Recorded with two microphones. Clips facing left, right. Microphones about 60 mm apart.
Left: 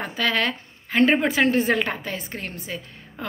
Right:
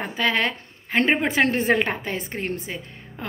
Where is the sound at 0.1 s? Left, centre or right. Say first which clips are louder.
Right 1 dB; right.